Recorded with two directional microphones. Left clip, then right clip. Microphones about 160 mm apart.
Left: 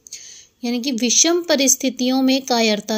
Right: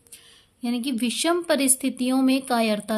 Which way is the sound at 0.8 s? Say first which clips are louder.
Left 8 dB; 15° left (ahead or behind).